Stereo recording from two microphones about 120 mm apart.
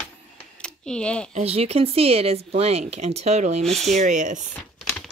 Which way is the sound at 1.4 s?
55° right (ahead or behind).